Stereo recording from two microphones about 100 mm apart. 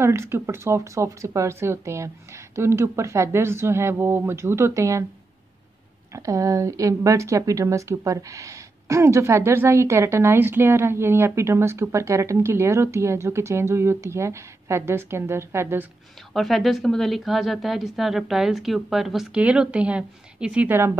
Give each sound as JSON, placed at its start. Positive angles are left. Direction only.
{"t": 0.0, "sound": "speech", "side_deg": -25}
{"t": 6.1, "sound": "speech", "side_deg": -35}
{"t": 16.3, "sound": "a woman's voice", "side_deg": 0}